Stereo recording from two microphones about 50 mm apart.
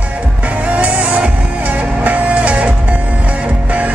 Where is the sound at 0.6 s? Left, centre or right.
Right.